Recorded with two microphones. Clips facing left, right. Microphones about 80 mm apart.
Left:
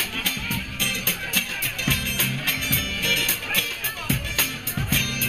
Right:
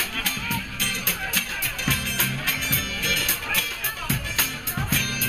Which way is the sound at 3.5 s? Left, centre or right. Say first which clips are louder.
Even; centre.